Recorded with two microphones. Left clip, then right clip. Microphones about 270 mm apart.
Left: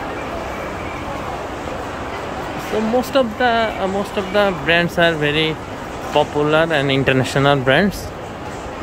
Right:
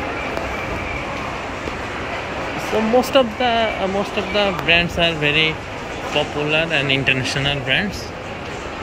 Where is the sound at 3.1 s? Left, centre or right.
Centre.